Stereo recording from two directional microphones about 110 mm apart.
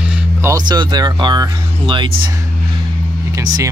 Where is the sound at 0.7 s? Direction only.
40° right (ahead or behind).